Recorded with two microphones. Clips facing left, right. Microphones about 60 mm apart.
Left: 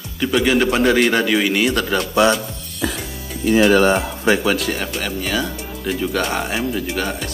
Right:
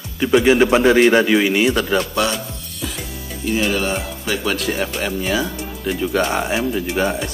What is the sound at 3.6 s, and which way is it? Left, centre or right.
Speech, left.